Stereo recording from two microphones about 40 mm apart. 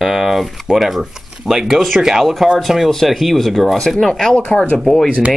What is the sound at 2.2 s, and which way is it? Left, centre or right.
Speech, centre.